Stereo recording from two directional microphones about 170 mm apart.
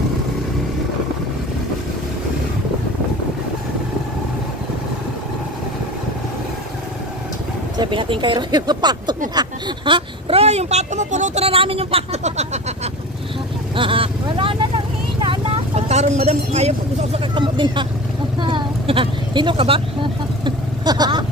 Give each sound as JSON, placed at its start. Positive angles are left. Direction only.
{"t": 7.7, "sound": "speech", "side_deg": -30}
{"t": 13.7, "sound": "speech", "side_deg": -30}
{"t": 18.4, "sound": "a sound", "side_deg": -30}